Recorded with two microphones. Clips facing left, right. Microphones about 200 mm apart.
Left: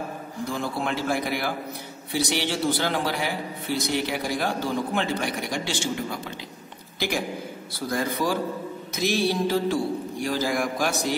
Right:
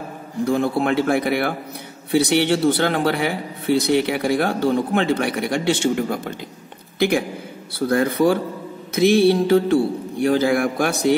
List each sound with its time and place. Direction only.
0.5 s a man's voice: 60° right (ahead or behind)